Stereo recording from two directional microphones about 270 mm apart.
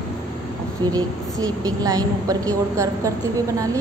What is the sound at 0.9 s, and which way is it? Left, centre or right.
A woman's voice, centre.